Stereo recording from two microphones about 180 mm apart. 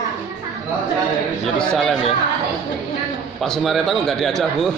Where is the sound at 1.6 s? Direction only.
5° left (ahead or behind).